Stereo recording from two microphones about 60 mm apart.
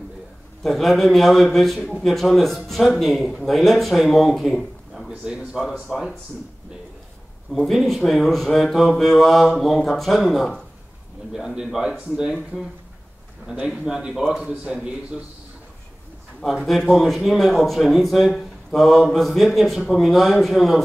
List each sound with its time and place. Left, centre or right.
0.7 s a man's voice: centre
5.0 s speech: centre
5.6 s a man's voice: centre
7.5 s a man's voice: centre
11.3 s a man's voice: centre
12.5 s a man's voice: centre
13.5 s a man's voice: centre
16.3 s a man's voice: centre